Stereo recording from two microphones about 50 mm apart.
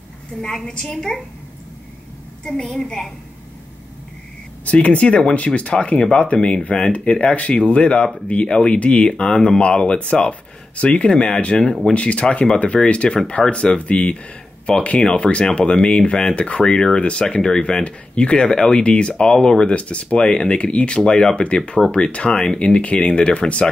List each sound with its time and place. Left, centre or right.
0.7 s a woman's voice: centre
2.4 s a woman's voice: centre
4.6 s speech: left
9.1 s a woman's voice: centre
22.3 s a woman's voice: centre
22.6 s speech: left